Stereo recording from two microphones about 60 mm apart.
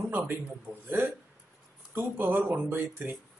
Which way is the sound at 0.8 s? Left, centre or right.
Right.